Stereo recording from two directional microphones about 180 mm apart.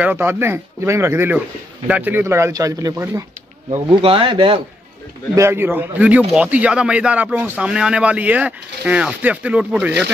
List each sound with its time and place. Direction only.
0.0 s speech: 10° right (ahead or behind)
3.9 s speech: 30° right (ahead or behind)
5.3 s speech: 15° right (ahead or behind)